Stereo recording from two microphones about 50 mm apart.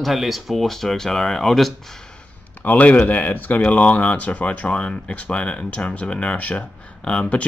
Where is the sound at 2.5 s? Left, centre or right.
Left.